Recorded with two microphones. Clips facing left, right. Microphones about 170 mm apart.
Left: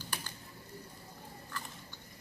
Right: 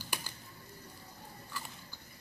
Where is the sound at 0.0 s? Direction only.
10° right (ahead or behind).